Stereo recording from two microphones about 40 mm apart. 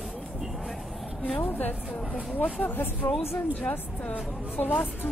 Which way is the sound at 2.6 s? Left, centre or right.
Left.